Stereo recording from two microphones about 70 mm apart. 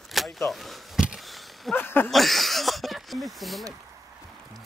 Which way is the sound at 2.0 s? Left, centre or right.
Centre.